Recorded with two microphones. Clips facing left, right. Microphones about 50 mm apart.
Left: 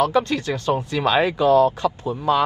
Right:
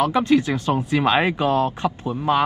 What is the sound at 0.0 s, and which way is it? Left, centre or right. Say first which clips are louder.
A man's voice: right 2 dB; right.